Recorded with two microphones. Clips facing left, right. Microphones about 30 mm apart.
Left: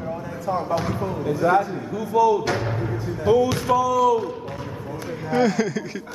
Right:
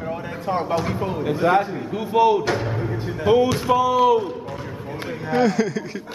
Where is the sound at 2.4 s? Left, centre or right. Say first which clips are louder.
Right 1 dB; centre.